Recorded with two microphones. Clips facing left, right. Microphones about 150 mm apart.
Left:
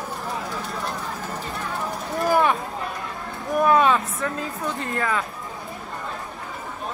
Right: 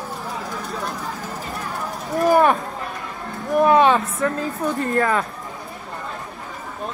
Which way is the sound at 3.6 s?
30° right (ahead or behind).